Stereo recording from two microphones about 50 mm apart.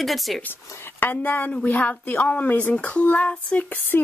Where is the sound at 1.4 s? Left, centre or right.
Left.